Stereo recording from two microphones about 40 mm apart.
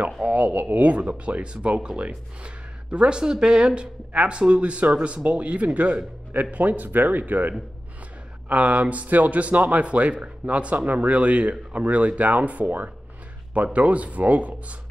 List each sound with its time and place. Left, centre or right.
0.0 s a man's voice: right
8.5 s speech: right